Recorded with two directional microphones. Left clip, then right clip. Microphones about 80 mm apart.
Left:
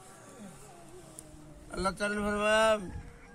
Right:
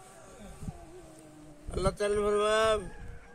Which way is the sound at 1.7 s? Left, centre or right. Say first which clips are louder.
Right 3 dB; right.